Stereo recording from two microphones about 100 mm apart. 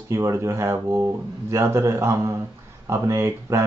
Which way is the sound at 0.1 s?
30° right (ahead or behind).